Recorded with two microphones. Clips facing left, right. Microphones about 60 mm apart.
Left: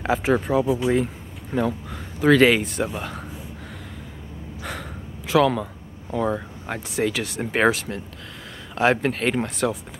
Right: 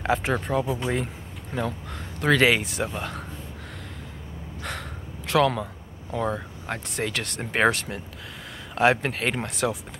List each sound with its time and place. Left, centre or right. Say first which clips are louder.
0.0 s speech: left 3 dB; centre
5.3 s speech: left 3 dB; centre